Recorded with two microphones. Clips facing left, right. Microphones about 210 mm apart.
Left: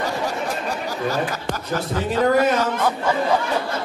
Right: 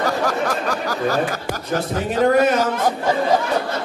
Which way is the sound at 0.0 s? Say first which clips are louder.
Right 4 dB; 90° right.